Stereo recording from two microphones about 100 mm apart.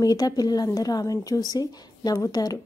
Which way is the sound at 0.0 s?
40° left (ahead or behind).